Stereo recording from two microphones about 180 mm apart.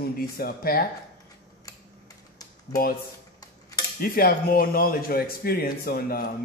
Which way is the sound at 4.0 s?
55° left (ahead or behind).